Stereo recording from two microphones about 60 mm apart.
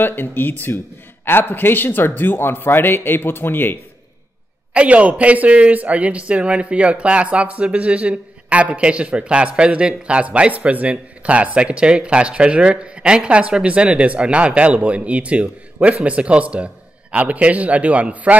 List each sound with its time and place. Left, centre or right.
0.0 s a man's voice: left
4.7 s a man's voice: right